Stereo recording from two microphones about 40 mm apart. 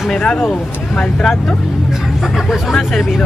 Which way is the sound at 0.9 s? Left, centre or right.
Centre.